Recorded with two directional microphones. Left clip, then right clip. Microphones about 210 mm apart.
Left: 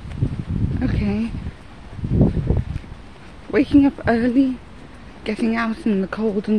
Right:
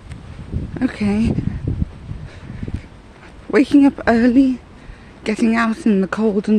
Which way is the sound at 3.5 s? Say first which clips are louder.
Right 3 dB; 30° right (ahead or behind).